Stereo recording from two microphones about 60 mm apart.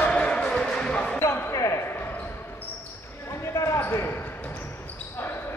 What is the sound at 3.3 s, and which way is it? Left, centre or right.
Basketball bounce, left.